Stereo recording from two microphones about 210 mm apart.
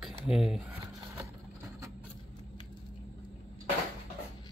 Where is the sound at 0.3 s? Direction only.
5° right (ahead or behind).